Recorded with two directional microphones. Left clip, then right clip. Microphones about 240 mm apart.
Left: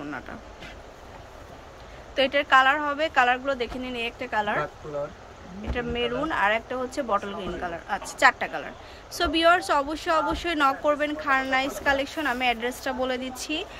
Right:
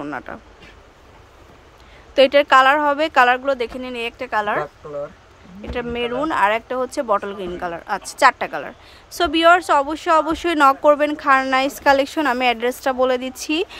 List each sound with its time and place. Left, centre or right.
0.0 s speech: centre
2.1 s speech: right